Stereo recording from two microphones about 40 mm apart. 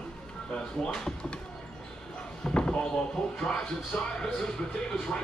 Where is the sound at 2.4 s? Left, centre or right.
Left.